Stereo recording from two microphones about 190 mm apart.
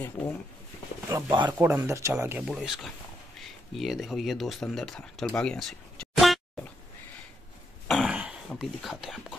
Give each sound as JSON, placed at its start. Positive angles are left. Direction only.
{"t": 0.2, "sound": "speech", "side_deg": 0}
{"t": 1.1, "sound": "speech", "side_deg": -20}
{"t": 2.4, "sound": "speech", "side_deg": 0}
{"t": 7.9, "sound": "throat clearing", "side_deg": -5}